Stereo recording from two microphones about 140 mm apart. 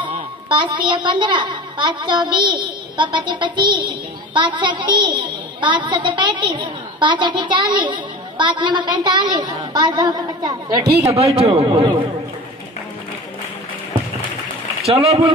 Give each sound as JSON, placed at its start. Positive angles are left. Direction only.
{"t": 0.5, "sound": "a woman's voice", "side_deg": -35}
{"t": 11.1, "sound": "a man's voice", "side_deg": -45}
{"t": 14.9, "sound": "a man's voice", "side_deg": -45}